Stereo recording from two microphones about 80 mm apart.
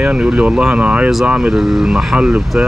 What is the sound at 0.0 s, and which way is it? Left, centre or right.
Speech, centre.